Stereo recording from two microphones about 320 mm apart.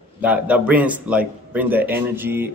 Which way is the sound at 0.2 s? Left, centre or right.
Centre.